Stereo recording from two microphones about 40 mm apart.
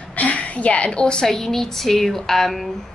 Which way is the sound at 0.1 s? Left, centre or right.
Left.